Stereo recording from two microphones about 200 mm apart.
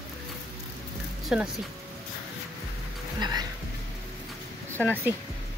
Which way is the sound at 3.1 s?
20° right (ahead or behind).